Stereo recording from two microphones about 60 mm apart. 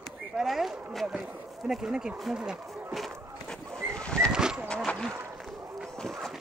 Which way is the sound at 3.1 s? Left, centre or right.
Centre.